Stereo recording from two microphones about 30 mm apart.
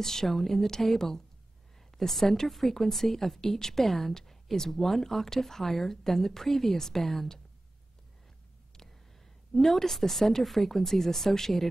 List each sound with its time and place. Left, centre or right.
0.0 s speech: centre
9.5 s speech: centre